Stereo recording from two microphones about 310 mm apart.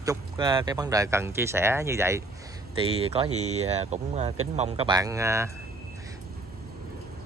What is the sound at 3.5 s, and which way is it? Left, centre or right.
Speech, right.